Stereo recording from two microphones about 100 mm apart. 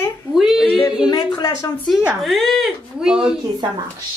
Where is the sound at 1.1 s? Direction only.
40° left (ahead or behind).